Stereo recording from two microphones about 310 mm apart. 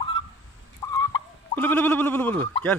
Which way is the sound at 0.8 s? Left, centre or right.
Centre.